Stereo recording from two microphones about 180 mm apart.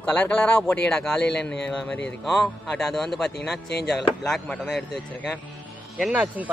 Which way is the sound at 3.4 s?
65° left (ahead or behind).